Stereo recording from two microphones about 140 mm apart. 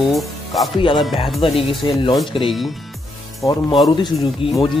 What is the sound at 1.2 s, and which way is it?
Speech, 40° left (ahead or behind).